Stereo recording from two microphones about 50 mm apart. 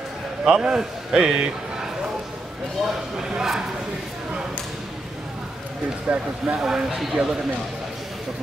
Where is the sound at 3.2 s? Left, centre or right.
Centre.